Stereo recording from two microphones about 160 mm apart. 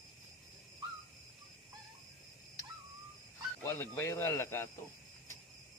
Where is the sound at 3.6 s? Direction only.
15° left (ahead or behind).